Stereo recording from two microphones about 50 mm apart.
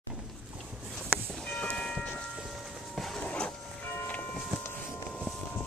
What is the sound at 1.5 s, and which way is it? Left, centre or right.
Church bell, centre.